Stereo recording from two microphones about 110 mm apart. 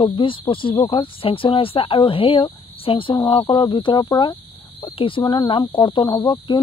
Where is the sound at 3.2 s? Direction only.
40° left (ahead or behind).